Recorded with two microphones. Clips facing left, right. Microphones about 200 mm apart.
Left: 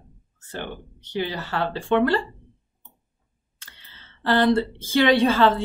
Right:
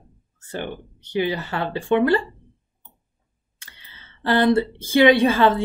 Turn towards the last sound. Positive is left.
turn(degrees=-15)  # may be behind; listen again after turning